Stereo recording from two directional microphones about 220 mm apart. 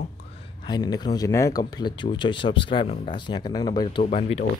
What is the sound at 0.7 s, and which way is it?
Speech, 20° left (ahead or behind).